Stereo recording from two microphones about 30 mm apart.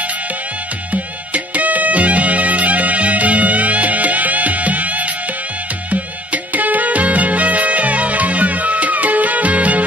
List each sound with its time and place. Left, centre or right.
0.9 s music: right